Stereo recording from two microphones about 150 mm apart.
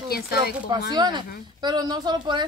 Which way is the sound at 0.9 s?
30° right (ahead or behind).